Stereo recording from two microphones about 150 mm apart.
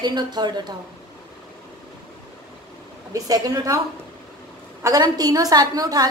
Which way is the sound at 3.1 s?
25° right (ahead or behind).